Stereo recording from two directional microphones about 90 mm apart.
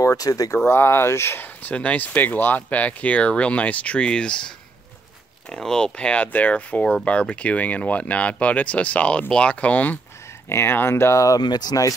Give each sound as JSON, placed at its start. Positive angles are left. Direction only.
{"t": 0.0, "sound": "speech", "side_deg": 40}
{"t": 0.6, "sound": "speech", "side_deg": 25}
{"t": 10.5, "sound": "speech", "side_deg": 25}
{"t": 11.4, "sound": "speech", "side_deg": 50}